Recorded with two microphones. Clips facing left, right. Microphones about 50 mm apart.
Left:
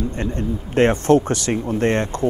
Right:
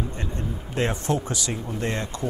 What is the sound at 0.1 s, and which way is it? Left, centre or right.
A man's voice, left.